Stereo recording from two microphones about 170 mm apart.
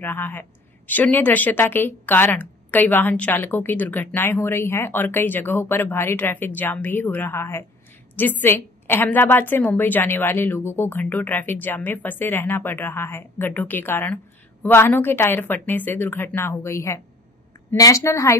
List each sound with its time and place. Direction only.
0.0 s a woman's voice: 10° left (ahead or behind)